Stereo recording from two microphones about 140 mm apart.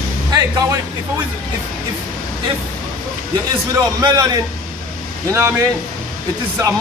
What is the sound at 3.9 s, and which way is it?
A man's voice, 25° right (ahead or behind).